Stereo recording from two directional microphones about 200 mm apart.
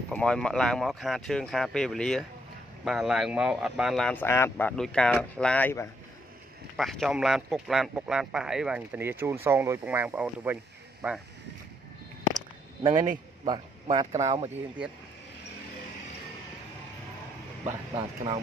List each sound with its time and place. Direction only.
0.1 s speech: 5° left (ahead or behind)
13.5 s speech: 25° right (ahead or behind)
17.9 s speech: 25° right (ahead or behind)